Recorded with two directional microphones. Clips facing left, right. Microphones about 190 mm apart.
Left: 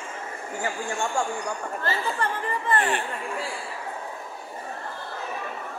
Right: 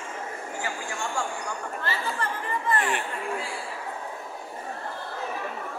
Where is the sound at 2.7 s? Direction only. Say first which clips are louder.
Left 2 dB; 30° left (ahead or behind).